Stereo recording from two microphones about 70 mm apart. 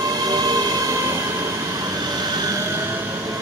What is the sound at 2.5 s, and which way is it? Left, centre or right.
Train, right.